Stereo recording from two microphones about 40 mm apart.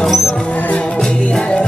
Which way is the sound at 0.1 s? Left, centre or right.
Centre.